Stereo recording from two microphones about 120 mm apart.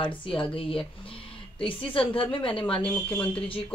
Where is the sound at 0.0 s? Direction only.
45° left (ahead or behind).